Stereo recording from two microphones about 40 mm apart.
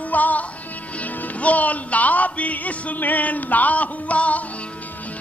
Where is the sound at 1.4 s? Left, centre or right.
Left.